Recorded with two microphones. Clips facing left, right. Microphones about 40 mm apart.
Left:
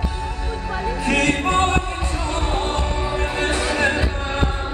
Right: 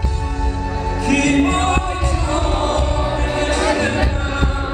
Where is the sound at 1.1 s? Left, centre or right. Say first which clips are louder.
Right 4 dB; centre.